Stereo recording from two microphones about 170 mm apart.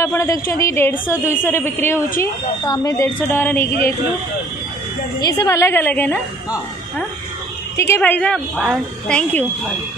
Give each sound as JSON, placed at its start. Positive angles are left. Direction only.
{"t": 0.0, "sound": "a woman's voice", "side_deg": 15}
{"t": 5.2, "sound": "a woman's voice", "side_deg": 20}